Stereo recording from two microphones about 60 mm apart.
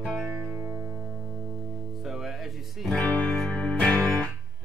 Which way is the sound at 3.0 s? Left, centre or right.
Left.